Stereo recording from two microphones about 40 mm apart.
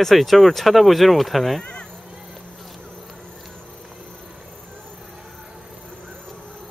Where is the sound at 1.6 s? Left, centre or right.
Left.